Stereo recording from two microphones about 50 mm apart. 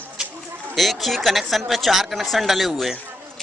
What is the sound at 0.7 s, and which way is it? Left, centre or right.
Speech, centre.